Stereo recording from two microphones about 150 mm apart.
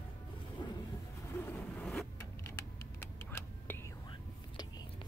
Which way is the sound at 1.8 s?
Centre (ahead or behind).